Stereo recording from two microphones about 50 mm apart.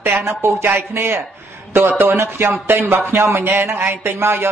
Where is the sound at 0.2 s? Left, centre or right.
Right.